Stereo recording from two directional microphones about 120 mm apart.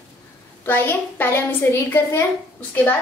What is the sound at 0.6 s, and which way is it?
A woman's voice, 15° left (ahead or behind).